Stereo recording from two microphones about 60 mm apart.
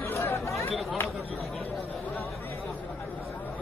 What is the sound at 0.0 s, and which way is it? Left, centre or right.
Chatter, left.